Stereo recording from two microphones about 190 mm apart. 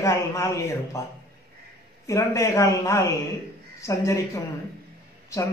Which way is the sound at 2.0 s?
15° left (ahead or behind).